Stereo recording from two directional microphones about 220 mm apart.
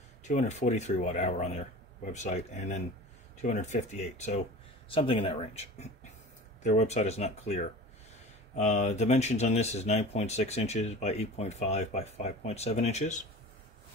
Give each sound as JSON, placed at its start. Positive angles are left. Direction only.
{"t": 0.2, "sound": "speech", "side_deg": 35}